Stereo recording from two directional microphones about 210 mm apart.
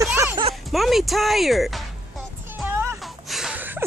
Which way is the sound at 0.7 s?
Centre (ahead or behind).